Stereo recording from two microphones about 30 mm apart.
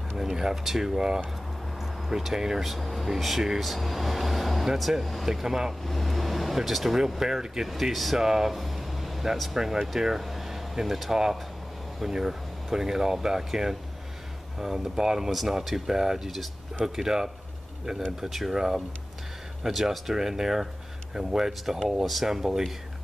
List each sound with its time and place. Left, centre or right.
0.2 s speech: centre
1.8 s a sound: centre
2.6 s speech: centre
5.9 s speech: centre
7.6 s speech: centre
8.2 s air conditioning: centre
9.6 s speech: centre
19.6 s speech: centre
20.2 s speech: centre